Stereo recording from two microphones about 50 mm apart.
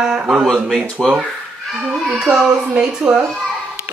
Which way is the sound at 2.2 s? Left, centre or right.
Centre.